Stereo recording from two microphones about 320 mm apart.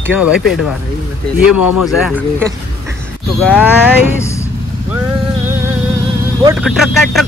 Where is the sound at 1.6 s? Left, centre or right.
Left.